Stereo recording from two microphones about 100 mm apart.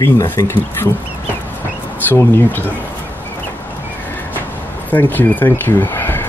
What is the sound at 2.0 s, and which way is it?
Speech, 20° left (ahead or behind).